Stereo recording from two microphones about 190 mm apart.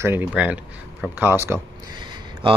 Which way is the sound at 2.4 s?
25° right (ahead or behind).